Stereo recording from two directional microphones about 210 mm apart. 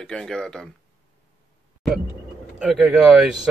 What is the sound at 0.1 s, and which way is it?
Speech, 5° left (ahead or behind).